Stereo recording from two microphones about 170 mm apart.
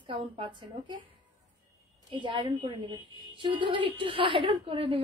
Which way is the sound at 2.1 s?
30° right (ahead or behind).